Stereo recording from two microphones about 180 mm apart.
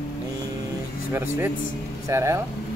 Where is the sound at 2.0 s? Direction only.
15° right (ahead or behind).